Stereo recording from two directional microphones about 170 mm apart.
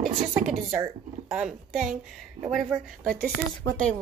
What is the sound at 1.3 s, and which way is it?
Speech, 5° right (ahead or behind).